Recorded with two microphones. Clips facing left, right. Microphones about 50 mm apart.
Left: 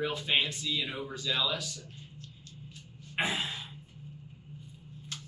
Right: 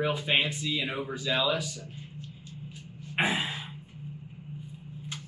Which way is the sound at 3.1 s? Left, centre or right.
Centre.